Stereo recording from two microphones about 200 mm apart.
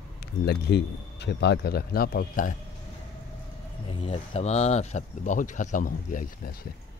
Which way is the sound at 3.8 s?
25° left (ahead or behind).